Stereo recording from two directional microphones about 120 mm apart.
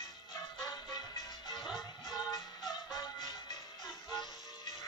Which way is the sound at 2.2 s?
35° left (ahead or behind).